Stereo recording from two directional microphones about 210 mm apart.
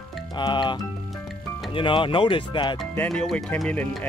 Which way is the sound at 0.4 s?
20° left (ahead or behind).